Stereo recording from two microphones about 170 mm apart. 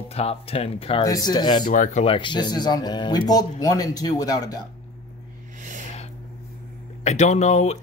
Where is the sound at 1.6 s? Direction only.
50° left (ahead or behind).